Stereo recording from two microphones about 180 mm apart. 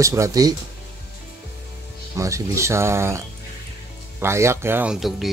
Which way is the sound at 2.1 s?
15° right (ahead or behind).